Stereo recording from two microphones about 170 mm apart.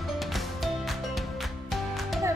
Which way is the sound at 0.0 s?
Centre (ahead or behind).